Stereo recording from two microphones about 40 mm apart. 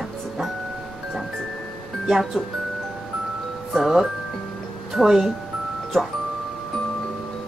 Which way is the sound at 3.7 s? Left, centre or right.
Centre.